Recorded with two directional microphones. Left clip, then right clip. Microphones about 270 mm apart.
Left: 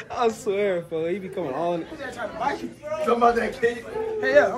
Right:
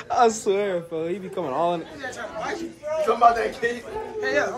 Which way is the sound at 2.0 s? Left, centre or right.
Centre.